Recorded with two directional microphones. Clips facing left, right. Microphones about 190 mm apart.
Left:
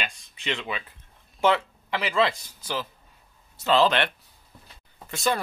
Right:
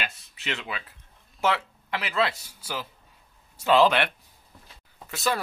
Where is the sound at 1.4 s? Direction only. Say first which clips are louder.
Left 4 dB; 5° right (ahead or behind).